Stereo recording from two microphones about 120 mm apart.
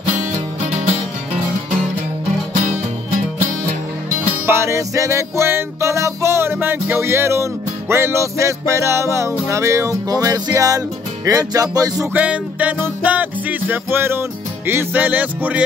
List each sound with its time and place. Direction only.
0.0 s music: 75° right (ahead or behind)
2.5 s music: 90° right
4.5 s music: 20° right (ahead or behind)
12.1 s music: 10° right (ahead or behind)